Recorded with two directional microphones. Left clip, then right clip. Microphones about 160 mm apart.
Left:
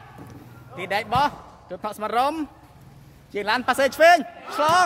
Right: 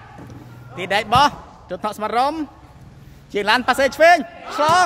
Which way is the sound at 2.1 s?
10° left (ahead or behind).